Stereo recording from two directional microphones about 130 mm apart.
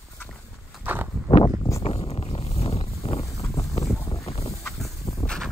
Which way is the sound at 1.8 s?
50° left (ahead or behind).